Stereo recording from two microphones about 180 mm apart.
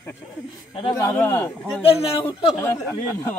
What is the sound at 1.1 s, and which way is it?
A man's voice, 15° left (ahead or behind).